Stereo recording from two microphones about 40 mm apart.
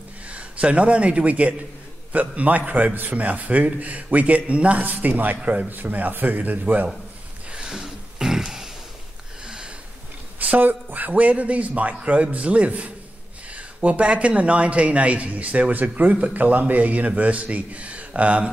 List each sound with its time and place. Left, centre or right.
0.3 s a man's voice: right
4.8 s a man's voice: right
5.4 s speech: right
5.7 s a man's voice: right
7.5 s a sound: centre
10.6 s speech: right